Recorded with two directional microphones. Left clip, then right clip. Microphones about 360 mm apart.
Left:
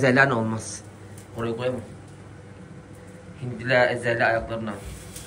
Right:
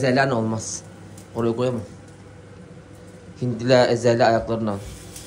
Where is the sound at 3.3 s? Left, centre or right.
Centre.